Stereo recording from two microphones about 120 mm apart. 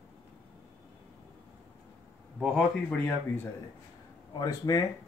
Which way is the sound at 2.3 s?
5° right (ahead or behind).